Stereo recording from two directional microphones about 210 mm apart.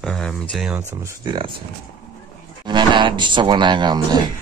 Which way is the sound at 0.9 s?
15° right (ahead or behind).